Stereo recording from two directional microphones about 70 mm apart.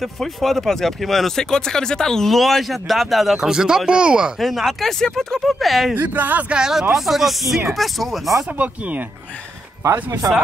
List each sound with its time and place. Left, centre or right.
0.0 s speech: centre
4.4 s speech: centre
5.9 s speech: right
6.5 s speech: centre
8.5 s speech: right